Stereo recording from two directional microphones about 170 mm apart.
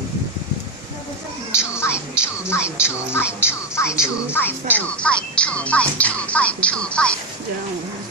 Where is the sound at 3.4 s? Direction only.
15° left (ahead or behind).